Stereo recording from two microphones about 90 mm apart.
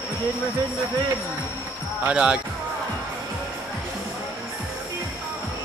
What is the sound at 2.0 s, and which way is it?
Speech, 10° right (ahead or behind).